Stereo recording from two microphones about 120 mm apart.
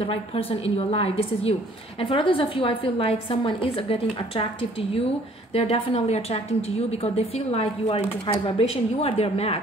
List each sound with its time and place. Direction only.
0.0 s a woman's voice: 50° left (ahead or behind)
2.0 s a woman's voice: 45° left (ahead or behind)